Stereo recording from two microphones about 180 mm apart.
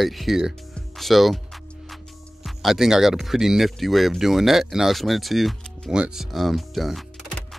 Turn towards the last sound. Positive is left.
turn(degrees=0)  # may be behind; listen again after turning